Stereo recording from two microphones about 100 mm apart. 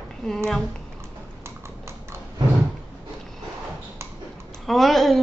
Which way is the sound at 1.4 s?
25° right (ahead or behind).